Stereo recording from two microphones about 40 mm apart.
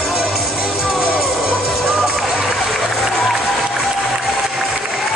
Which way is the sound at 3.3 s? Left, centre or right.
Centre.